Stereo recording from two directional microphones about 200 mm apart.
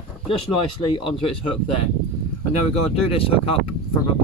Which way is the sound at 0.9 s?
25° left (ahead or behind).